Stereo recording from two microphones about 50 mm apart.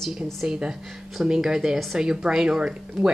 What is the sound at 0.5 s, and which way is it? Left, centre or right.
A woman's voice, centre.